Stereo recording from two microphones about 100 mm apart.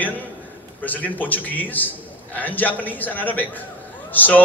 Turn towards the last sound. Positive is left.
turn(degrees=15)  # may be behind; listen again after turning